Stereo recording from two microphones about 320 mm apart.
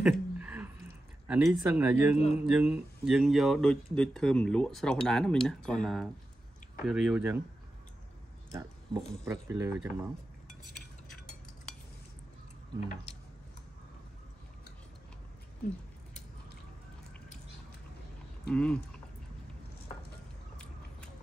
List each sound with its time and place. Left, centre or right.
0.0 s a sound: centre
2.1 s speech: centre
2.4 s speech: centre
8.5 s a sound: centre
9.1 s speech: centre
18.5 s speech: centre